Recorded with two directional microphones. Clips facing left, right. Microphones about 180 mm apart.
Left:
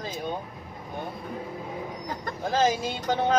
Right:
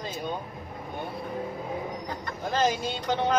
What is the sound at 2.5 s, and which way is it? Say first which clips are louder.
Speech: left 2 dB; centre (ahead or behind).